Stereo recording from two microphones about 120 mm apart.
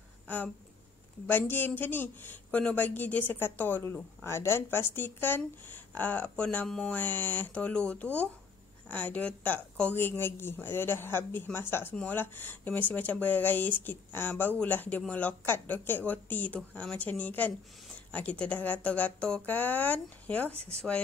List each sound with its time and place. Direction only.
1.2 s a woman's voice: 15° left (ahead or behind)